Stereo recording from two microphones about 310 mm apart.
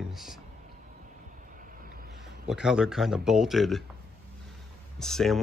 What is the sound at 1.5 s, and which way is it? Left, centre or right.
Vehicle, right.